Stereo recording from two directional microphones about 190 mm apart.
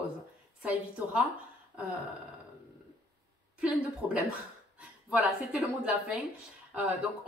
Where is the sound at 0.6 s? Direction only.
5° right (ahead or behind).